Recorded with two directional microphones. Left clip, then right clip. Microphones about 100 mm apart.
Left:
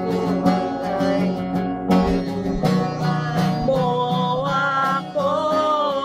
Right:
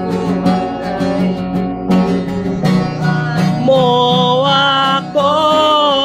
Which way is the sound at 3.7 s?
15° right (ahead or behind).